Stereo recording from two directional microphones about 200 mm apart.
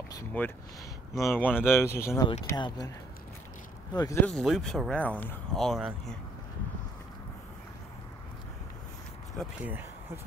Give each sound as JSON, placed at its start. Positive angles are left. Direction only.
{"t": 0.4, "sound": "speech", "side_deg": 10}
{"t": 3.9, "sound": "speech", "side_deg": 15}
{"t": 4.3, "sound": "speech", "side_deg": 5}
{"t": 9.4, "sound": "speech", "side_deg": -10}